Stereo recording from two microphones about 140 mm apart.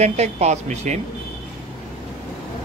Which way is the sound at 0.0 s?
50° right (ahead or behind).